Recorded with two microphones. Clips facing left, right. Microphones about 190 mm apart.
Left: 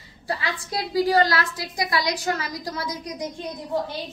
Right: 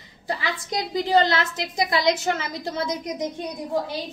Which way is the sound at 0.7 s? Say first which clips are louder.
Even; 20° right (ahead or behind).